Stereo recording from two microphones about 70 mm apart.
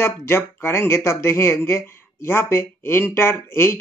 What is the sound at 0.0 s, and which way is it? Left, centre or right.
Speech, left.